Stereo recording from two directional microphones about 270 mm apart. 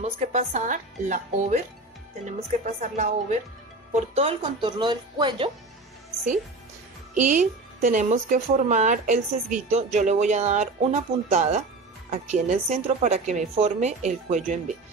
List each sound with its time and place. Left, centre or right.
0.0 s speech: right
7.2 s speech: right